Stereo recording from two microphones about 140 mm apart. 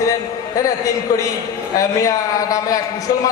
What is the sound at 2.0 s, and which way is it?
A man's voice, 25° left (ahead or behind).